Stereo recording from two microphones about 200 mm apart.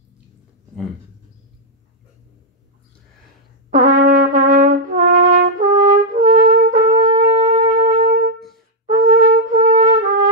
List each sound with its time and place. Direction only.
3.7 s brass instrument: 45° right (ahead or behind)
5.9 s shofar: 40° right (ahead or behind)
8.8 s wind instrument: 45° right (ahead or behind)